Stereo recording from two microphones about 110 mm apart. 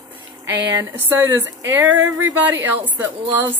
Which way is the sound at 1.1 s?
20° right (ahead or behind).